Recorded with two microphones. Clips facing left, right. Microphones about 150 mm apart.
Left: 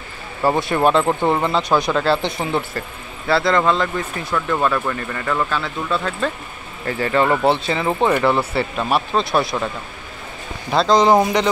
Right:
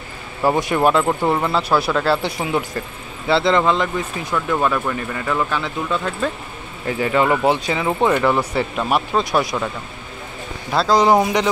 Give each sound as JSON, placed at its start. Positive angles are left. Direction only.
{"t": 0.4, "sound": "speech", "side_deg": -15}
{"t": 1.0, "sound": "speech", "side_deg": 10}
{"t": 2.0, "sound": "speech", "side_deg": -10}
{"t": 3.3, "sound": "speech", "side_deg": -20}
{"t": 4.3, "sound": "speech", "side_deg": -5}
{"t": 8.0, "sound": "speech", "side_deg": 10}
{"t": 8.3, "sound": "speech", "side_deg": -15}
{"t": 10.7, "sound": "speech", "side_deg": -5}